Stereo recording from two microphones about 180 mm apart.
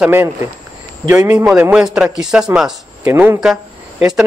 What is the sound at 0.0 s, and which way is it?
A man's voice, 10° right (ahead or behind).